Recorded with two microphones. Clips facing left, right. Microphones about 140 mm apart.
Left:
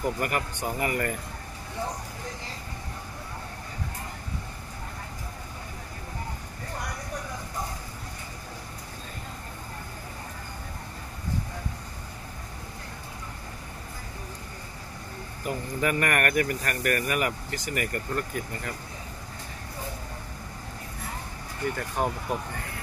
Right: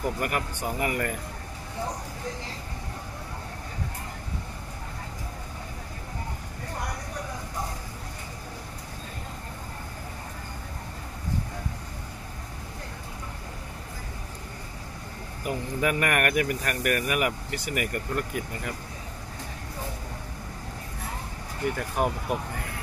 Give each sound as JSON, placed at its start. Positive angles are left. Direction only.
{"t": 0.0, "sound": "speech", "side_deg": -5}
{"t": 15.4, "sound": "speech", "side_deg": -5}
{"t": 21.7, "sound": "speech", "side_deg": -10}